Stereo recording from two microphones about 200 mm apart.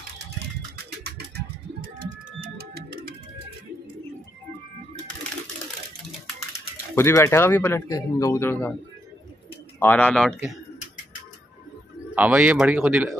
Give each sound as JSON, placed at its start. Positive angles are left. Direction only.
{"t": 1.8, "sound": "bird", "side_deg": -45}
{"t": 7.0, "sound": "speech", "side_deg": 15}
{"t": 9.8, "sound": "speech", "side_deg": 10}
{"t": 12.2, "sound": "speech", "side_deg": -5}